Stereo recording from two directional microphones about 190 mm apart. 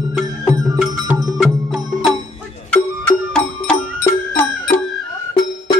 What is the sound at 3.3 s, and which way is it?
Music, 10° left (ahead or behind).